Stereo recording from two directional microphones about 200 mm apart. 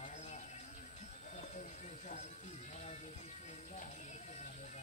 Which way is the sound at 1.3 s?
35° left (ahead or behind).